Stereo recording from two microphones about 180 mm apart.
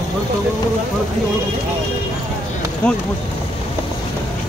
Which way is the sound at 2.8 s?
5° left (ahead or behind).